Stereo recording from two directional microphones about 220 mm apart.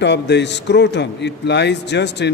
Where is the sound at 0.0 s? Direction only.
50° left (ahead or behind).